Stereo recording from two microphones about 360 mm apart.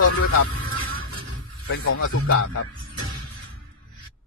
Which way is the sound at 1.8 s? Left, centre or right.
Left.